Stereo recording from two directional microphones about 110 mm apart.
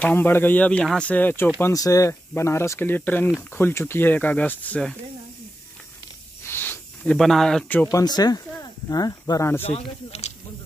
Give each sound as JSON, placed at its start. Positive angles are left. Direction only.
{"t": 0.0, "sound": "speech", "side_deg": 20}
{"t": 1.6, "sound": "speech", "side_deg": 30}
{"t": 6.4, "sound": "a sound", "side_deg": 20}
{"t": 7.2, "sound": "speech", "side_deg": 0}
{"t": 7.9, "sound": "speech", "side_deg": 40}
{"t": 9.6, "sound": "speech", "side_deg": 65}